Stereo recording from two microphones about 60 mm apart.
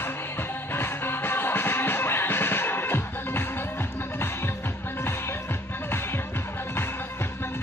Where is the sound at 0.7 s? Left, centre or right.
Left.